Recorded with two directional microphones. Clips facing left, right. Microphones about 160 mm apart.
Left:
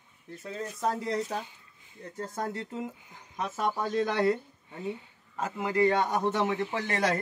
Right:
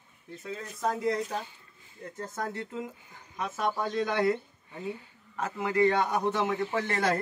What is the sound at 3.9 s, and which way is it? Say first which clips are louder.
Speech: left 2 dB; 35° left (ahead or behind).